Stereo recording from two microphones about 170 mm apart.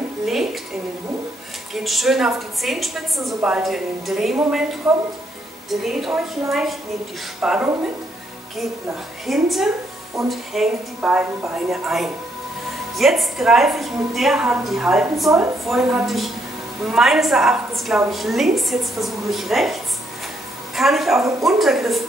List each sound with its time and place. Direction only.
1.7 s a woman's voice: centre (ahead or behind)
9.2 s a woman's voice: centre (ahead or behind)
15.2 s a woman's voice: 20° right (ahead or behind)
15.6 s a woman's voice: centre (ahead or behind)